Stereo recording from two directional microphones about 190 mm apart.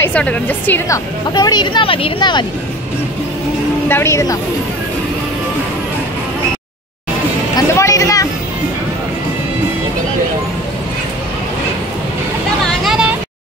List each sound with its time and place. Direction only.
0.0 s a woman's voice: 5° left (ahead or behind); by 2.4 s 25° left (ahead or behind)
3.9 s a woman's voice: 15° left (ahead or behind)
7.5 s music: 15° left (ahead or behind)
12.8 s a sound: 5° right (ahead or behind)